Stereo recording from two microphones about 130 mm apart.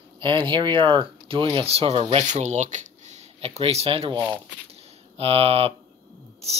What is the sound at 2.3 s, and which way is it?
Speech, 60° right (ahead or behind).